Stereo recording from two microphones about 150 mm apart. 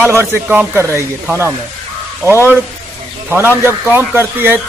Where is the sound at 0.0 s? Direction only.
15° right (ahead or behind).